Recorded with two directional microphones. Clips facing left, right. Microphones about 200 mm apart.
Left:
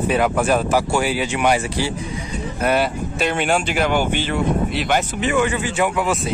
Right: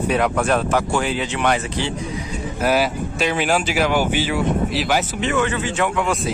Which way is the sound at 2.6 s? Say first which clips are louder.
Even; centre (ahead or behind).